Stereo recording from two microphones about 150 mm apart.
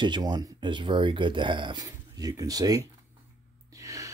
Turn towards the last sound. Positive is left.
turn(degrees=-20)  # may be behind; listen again after turning